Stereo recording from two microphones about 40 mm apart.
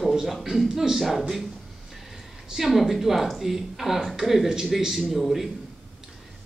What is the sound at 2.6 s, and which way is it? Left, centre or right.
A woman's voice, centre.